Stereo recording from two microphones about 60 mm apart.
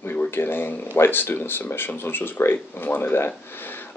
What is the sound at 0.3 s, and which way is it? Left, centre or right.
Speech, left.